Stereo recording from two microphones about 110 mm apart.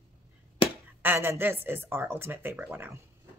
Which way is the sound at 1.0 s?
20° right (ahead or behind).